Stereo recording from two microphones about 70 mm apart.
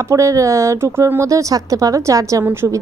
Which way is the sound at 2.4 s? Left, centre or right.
Right.